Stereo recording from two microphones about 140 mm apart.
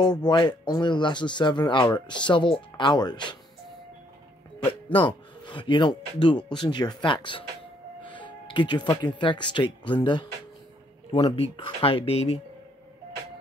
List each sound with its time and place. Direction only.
0.0 s speech: 30° left (ahead or behind)
4.9 s speech: 35° left (ahead or behind)